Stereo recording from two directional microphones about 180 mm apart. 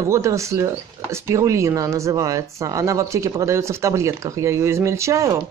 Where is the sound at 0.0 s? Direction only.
15° right (ahead or behind).